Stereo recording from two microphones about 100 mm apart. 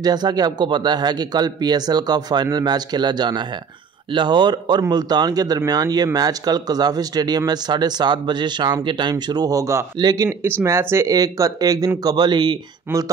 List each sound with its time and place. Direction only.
0.0 s speech: 45° right (ahead or behind)
9.1 s speech: 40° right (ahead or behind)
10.6 s speech: 25° right (ahead or behind); by 12.5 s 45° right (ahead or behind)